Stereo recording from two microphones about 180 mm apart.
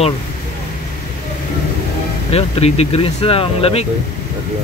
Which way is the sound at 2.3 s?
35° left (ahead or behind).